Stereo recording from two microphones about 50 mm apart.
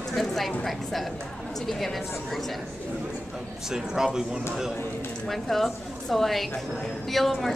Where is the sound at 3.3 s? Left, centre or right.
Centre.